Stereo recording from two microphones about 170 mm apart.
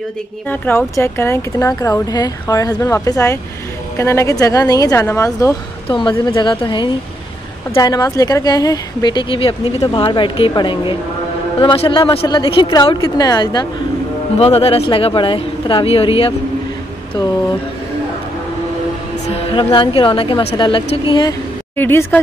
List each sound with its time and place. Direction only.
0.5 s speech: 15° left (ahead or behind)
5.9 s speech: 30° left (ahead or behind)
14.4 s speech: 35° left (ahead or behind)
19.2 s speech: 35° left (ahead or behind)
21.7 s speech: 10° left (ahead or behind)